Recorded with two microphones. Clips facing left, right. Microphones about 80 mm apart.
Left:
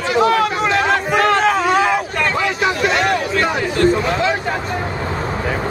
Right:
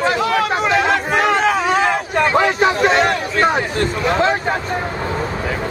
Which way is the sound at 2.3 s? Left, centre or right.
Right.